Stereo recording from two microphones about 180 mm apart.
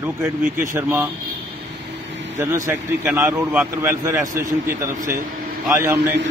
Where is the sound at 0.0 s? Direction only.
10° right (ahead or behind).